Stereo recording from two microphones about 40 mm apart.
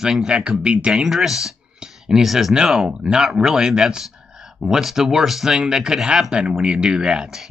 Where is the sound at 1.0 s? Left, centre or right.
Centre.